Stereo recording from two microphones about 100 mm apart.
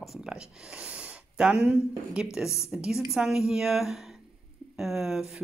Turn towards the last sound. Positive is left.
turn(degrees=-5)  # may be behind; listen again after turning